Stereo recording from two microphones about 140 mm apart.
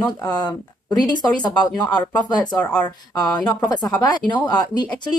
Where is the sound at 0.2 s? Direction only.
30° left (ahead or behind).